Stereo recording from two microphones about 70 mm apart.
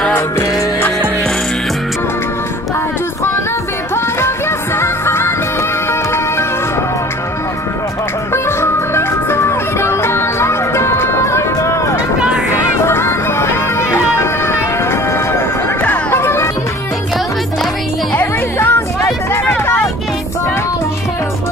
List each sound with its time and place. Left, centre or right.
3.9 s music: left
8.3 s music: left
12.2 s a sound: centre
12.8 s music: left
18.1 s music: left